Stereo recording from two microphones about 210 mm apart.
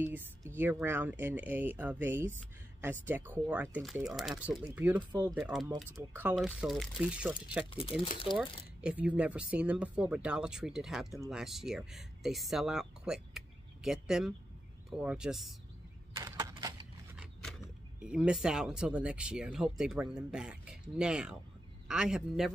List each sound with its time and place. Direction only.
0.6 s speech: 10° right (ahead or behind)
7.7 s speech: 25° left (ahead or behind)
8.8 s speech: 5° right (ahead or behind)
16.2 s a sound: 15° right (ahead or behind)
17.2 s a sound: centre (ahead or behind)
18.0 s speech: 5° right (ahead or behind)